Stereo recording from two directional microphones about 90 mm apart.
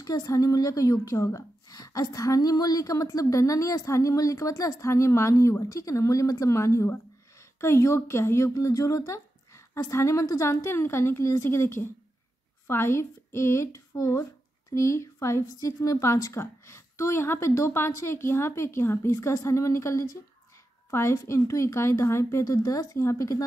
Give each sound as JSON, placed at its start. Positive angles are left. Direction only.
{"t": 0.0, "sound": "a woman's voice", "side_deg": 45}